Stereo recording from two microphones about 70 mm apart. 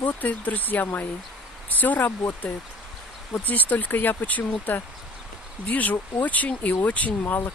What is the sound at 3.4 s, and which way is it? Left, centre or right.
Speech, left.